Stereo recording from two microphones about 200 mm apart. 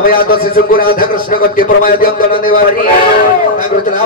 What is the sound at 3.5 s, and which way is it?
Speech, 40° left (ahead or behind).